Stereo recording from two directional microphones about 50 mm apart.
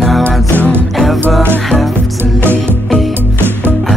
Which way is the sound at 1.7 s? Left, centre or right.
Left.